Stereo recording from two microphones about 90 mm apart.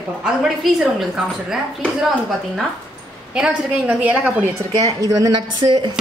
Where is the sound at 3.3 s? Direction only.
10° right (ahead or behind).